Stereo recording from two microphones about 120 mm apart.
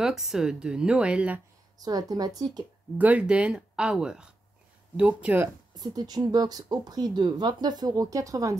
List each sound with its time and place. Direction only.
0.0 s speech: 5° right (ahead or behind)
1.8 s speech: 30° right (ahead or behind)
3.0 s speech: 10° right (ahead or behind)
5.8 s speech: 35° right (ahead or behind)